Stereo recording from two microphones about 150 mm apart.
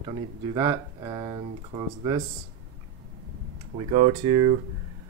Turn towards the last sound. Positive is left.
turn(degrees=-30)  # may be behind; listen again after turning